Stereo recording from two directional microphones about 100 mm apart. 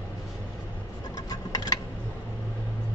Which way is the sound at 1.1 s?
40° left (ahead or behind).